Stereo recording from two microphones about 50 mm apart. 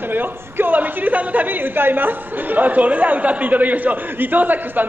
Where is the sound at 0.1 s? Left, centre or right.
Right.